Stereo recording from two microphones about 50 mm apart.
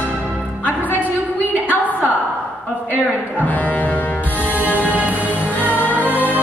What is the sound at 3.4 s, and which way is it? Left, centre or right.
Music, left.